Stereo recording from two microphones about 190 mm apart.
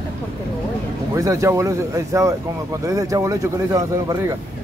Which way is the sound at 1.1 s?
15° right (ahead or behind).